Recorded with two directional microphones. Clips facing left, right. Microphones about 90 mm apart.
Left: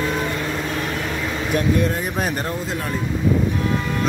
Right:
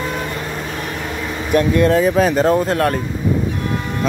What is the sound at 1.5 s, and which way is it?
Speech, 70° right (ahead or behind).